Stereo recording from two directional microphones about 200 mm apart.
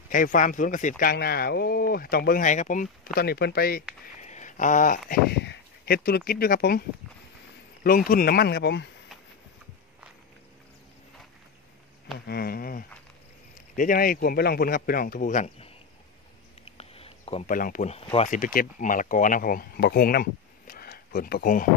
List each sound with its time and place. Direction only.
0.1 s speech: 40° left (ahead or behind)
3.2 s speech: 55° left (ahead or behind)
4.0 s a sound: 35° left (ahead or behind)
7.8 s speech: 45° left (ahead or behind)
12.3 s speech: 50° left (ahead or behind)
16.6 s a sound: 30° left (ahead or behind)
17.5 s speech: 45° left (ahead or behind)
17.9 s speech: 30° left (ahead or behind)
18.3 s speech: 45° left (ahead or behind)